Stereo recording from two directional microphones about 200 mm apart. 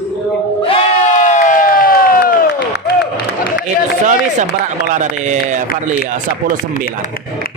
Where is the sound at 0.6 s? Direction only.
40° left (ahead or behind).